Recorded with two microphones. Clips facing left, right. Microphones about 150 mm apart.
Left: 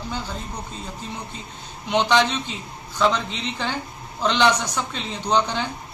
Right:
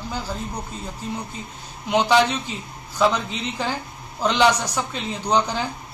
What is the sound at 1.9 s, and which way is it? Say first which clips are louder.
Speech: right 1 dB; 10° right (ahead or behind).